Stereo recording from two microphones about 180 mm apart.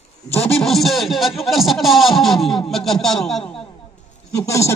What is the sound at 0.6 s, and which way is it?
Speech, centre (ahead or behind).